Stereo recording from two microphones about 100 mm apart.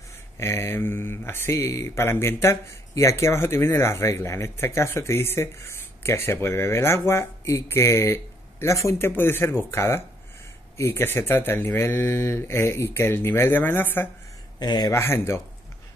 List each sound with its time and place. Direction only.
0.4 s speech: 25° left (ahead or behind)
14.6 s speech: 45° left (ahead or behind)
14.9 s speech: 25° left (ahead or behind)